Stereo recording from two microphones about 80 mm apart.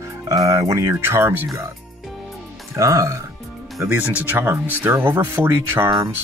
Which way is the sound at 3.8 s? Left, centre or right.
Right.